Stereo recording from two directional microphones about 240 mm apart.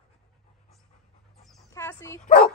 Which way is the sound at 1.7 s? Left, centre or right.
Centre.